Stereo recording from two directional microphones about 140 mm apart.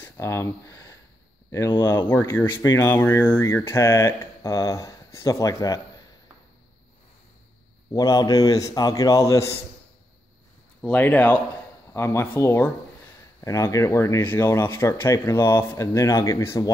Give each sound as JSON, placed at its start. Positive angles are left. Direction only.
{"t": 0.0, "sound": "speech", "side_deg": 20}
{"t": 7.9, "sound": "speech", "side_deg": 25}
{"t": 10.8, "sound": "speech", "side_deg": 10}